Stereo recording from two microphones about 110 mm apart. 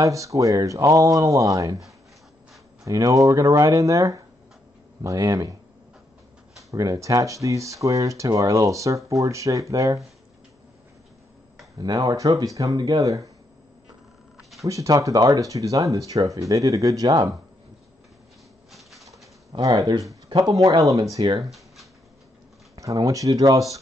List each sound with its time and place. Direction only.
0.0 s speech: 30° right (ahead or behind)
2.8 s speech: 30° right (ahead or behind)
6.7 s speech: 30° right (ahead or behind)
11.8 s speech: 40° right (ahead or behind)
14.6 s speech: 30° right (ahead or behind)
18.7 s bird: centre (ahead or behind)
19.6 s speech: 35° right (ahead or behind)
22.8 s speech: 30° right (ahead or behind)